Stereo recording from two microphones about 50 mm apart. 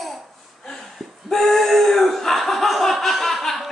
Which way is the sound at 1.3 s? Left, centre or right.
Centre.